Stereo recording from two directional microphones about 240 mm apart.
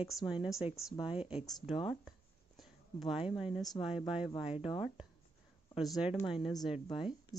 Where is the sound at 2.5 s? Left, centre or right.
Centre.